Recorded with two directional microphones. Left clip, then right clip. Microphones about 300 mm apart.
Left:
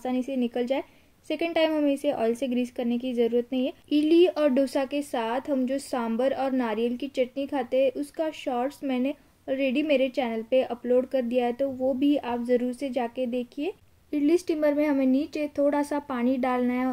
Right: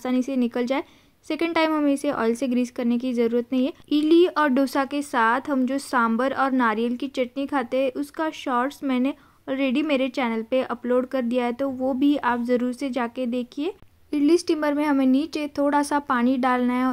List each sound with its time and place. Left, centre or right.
0.0 s a woman's voice: centre